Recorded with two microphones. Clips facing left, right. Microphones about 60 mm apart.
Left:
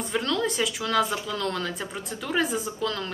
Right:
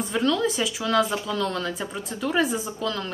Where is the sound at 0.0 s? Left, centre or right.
Centre.